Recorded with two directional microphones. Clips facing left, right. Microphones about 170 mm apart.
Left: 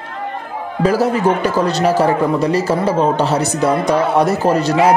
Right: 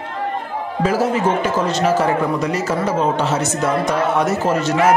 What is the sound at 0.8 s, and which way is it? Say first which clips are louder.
A man's voice: left 3 dB; 35° left (ahead or behind).